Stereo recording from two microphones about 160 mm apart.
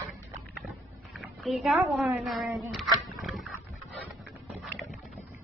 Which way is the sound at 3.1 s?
Centre (ahead or behind).